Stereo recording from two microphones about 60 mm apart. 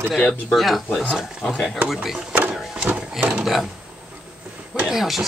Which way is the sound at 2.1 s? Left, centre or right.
Right.